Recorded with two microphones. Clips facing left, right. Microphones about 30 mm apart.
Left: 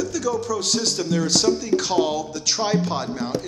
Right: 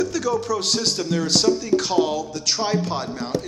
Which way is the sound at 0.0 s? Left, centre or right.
Right.